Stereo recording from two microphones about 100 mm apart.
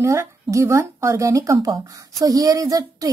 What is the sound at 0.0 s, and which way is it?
Speech, 30° right (ahead or behind).